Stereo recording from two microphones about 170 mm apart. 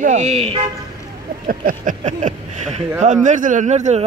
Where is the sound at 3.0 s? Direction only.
45° right (ahead or behind).